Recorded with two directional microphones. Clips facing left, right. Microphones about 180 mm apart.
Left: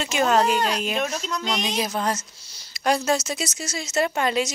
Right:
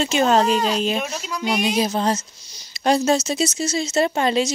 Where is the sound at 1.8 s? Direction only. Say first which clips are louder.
Right 5 dB; 30° right (ahead or behind).